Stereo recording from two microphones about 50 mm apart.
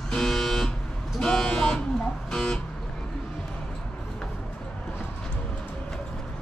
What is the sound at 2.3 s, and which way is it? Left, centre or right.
Guitar, centre.